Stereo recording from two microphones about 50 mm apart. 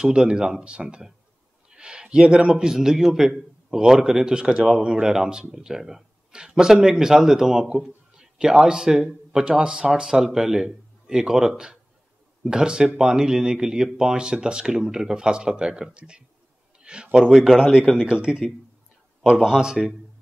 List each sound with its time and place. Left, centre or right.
0.0 s a man's voice: centre